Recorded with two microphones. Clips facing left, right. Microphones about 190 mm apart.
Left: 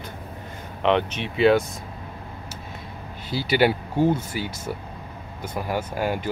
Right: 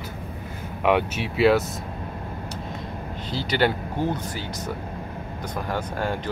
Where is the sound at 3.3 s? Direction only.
10° left (ahead or behind).